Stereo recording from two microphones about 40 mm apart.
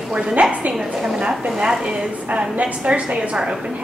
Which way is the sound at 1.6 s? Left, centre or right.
Centre.